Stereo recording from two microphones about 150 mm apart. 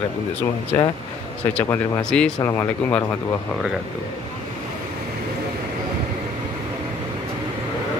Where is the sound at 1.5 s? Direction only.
5° left (ahead or behind).